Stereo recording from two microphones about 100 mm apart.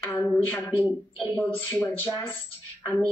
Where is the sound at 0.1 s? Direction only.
20° left (ahead or behind).